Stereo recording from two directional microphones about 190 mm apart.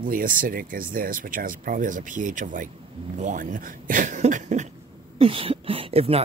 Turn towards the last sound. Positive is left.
turn(degrees=-30)  # may be behind; listen again after turning